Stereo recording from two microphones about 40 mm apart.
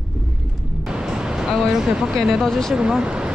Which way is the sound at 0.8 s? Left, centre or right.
Centre.